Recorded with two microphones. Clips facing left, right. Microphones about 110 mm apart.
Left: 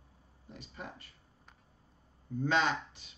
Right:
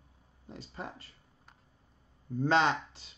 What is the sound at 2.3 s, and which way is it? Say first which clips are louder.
Speech: right 4 dB; 30° right (ahead or behind).